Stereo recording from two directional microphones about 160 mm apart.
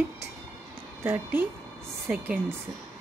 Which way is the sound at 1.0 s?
15° right (ahead or behind).